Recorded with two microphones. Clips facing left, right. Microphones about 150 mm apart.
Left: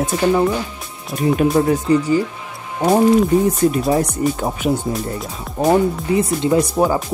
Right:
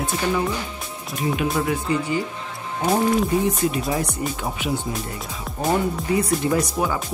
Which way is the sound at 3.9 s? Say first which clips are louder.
Left 7 dB; 45° left (ahead or behind).